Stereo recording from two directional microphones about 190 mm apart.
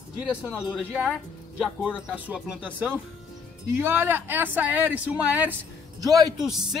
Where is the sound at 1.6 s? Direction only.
5° right (ahead or behind).